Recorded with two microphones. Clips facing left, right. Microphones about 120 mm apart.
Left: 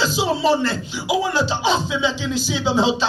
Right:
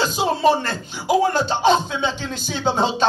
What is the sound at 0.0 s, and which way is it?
Speech, 50° right (ahead or behind).